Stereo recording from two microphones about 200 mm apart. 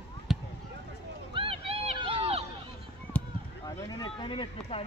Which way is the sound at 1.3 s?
25° right (ahead or behind).